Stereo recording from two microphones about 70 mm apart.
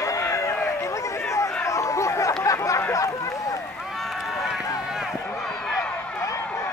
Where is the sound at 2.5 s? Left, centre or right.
Left.